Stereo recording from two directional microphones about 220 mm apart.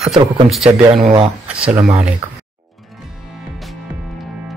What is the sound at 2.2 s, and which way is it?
Speech, 25° right (ahead or behind).